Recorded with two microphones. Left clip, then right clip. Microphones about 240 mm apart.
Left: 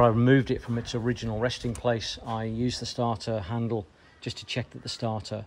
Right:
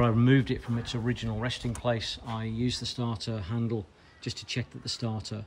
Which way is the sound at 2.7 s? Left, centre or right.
Centre.